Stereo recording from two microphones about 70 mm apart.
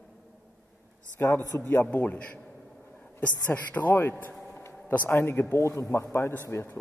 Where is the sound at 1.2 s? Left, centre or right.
Left.